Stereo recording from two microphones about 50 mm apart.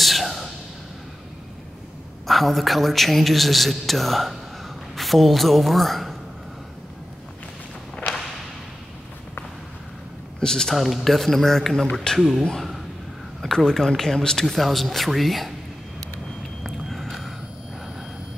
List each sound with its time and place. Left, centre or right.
0.0 s a sound: centre
2.2 s a man's voice: centre
10.4 s speech: centre
10.7 s a man's voice: centre
12.2 s a man's voice: centre
13.4 s a man's voice: centre
16.6 s a sound: centre